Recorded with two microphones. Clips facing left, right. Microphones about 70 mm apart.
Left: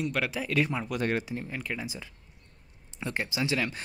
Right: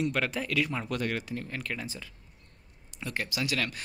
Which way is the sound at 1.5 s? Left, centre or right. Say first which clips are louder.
Left 1 dB; centre.